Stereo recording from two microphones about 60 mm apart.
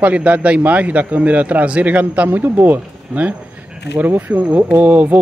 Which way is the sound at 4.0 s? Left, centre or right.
Right.